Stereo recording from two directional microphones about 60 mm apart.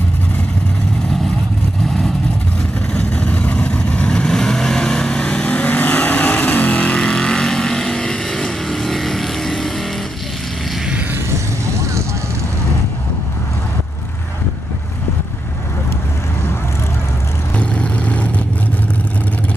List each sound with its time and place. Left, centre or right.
2.9 s vehicle: left; by 9.7 s centre
17.6 s vehicle: left